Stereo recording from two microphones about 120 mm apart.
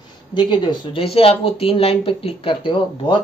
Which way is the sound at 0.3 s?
40° left (ahead or behind).